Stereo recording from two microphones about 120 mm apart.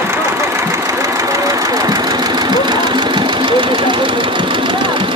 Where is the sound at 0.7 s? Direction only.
25° right (ahead or behind).